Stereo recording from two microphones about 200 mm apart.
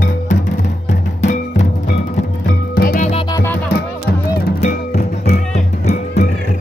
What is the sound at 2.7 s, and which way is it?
Music, 45° left (ahead or behind).